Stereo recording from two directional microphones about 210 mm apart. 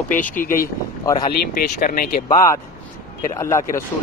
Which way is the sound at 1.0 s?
20° left (ahead or behind).